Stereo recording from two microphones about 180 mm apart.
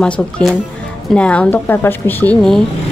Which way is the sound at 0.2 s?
5° left (ahead or behind).